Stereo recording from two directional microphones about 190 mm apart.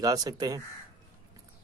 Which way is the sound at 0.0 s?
20° right (ahead or behind).